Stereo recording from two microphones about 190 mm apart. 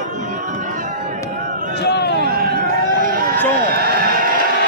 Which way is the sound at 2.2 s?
50° right (ahead or behind).